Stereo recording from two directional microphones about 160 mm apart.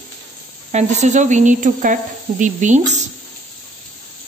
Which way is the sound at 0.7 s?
45° right (ahead or behind).